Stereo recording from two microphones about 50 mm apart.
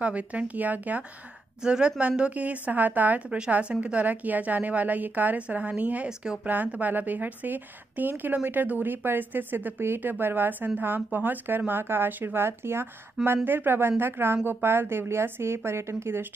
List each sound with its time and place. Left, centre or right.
0.0 s a woman's voice: right
1.6 s a woman's voice: centre; by 3.2 s right
3.3 s a woman's voice: centre; by 12.4 s right
12.4 s speech: right